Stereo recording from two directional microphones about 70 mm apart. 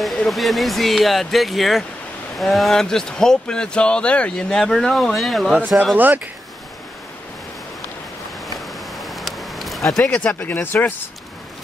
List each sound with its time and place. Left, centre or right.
0.0 s speech: centre
5.9 s speech: right
8.9 s a sound: centre
10.0 s speech: centre